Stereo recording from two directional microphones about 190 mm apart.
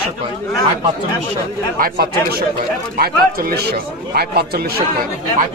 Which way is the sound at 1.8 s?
55° right (ahead or behind).